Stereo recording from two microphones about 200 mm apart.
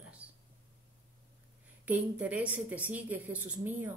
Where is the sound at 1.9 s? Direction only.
5° right (ahead or behind).